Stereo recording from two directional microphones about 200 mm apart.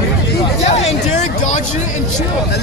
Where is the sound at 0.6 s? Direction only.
35° left (ahead or behind).